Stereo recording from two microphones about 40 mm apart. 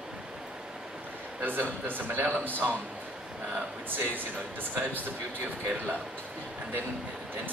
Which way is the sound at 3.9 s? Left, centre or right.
Right.